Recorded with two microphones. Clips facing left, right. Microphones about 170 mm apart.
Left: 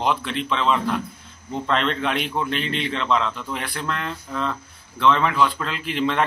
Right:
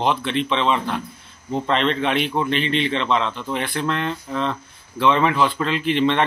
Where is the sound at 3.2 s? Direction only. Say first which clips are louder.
Right 2 dB; 30° right (ahead or behind).